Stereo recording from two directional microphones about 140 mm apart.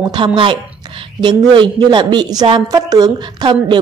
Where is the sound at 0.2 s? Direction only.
35° right (ahead or behind).